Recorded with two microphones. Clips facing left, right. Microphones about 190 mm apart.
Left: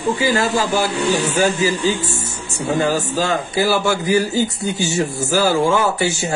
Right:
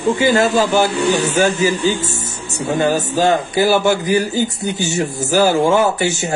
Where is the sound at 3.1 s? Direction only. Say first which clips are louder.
Right 4 dB; 60° right (ahead or behind).